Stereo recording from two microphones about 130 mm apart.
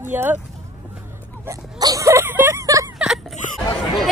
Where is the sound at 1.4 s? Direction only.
25° right (ahead or behind).